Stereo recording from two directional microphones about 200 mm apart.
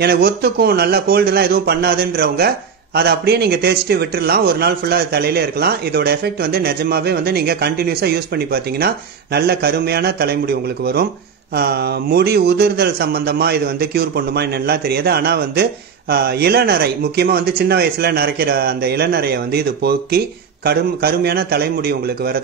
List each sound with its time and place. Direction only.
0.0 s a man's voice: 50° right (ahead or behind)